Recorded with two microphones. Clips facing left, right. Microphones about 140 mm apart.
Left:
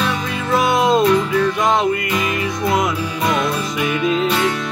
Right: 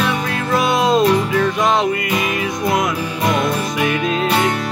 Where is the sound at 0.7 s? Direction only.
20° left (ahead or behind).